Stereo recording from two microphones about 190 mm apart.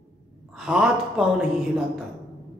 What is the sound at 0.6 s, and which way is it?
Speech, 5° right (ahead or behind).